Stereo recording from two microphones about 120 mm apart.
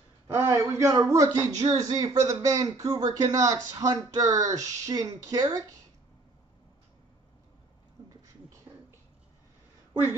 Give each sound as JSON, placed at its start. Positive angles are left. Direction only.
{"t": 0.3, "sound": "a man's voice", "side_deg": -20}